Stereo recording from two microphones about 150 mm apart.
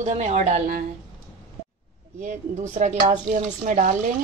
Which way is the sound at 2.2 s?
55° right (ahead or behind).